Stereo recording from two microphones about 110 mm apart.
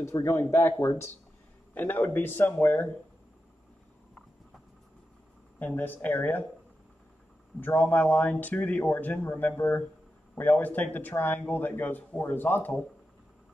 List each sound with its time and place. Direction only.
0.0 s speech: 25° left (ahead or behind)
5.6 s a man's voice: 15° left (ahead or behind)
7.6 s a man's voice: 15° left (ahead or behind)